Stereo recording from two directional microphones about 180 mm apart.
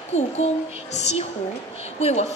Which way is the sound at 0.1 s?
35° left (ahead or behind).